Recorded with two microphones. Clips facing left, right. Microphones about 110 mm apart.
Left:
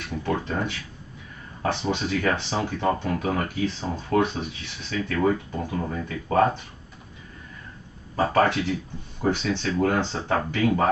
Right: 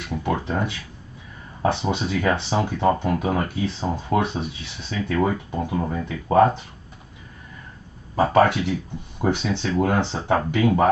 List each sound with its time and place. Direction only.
0.1 s speech: 20° right (ahead or behind)
8.2 s speech: 20° right (ahead or behind)